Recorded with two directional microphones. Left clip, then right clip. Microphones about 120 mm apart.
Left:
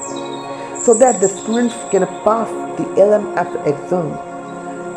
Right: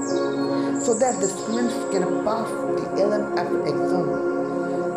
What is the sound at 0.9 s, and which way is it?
Music, 15° left (ahead or behind).